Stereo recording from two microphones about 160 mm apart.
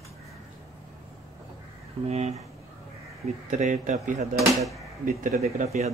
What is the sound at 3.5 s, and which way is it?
Speech, 50° right (ahead or behind).